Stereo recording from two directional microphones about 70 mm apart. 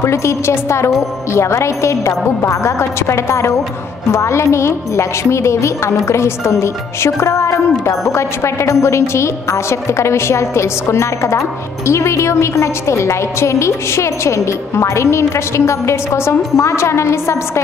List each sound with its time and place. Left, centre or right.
0.0 s a woman's voice: left
6.0 s music: left
11.9 s a woman's voice: left